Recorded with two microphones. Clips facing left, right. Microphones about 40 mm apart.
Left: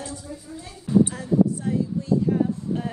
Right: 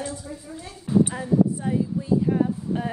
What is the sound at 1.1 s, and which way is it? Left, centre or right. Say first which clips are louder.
Speech: even; right.